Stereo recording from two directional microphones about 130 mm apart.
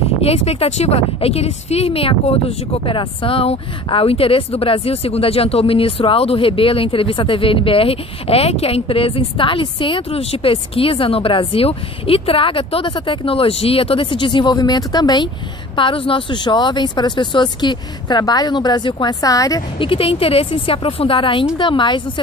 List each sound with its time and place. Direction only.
0.2 s speech: 50° left (ahead or behind); by 19.6 s 25° left (ahead or behind)
19.8 s speech: 45° left (ahead or behind)